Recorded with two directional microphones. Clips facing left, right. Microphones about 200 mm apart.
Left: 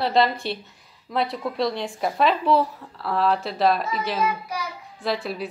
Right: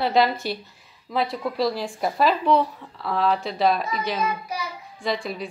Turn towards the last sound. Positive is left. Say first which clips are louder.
# left 1 dB
turn(degrees=5)  # may be behind; listen again after turning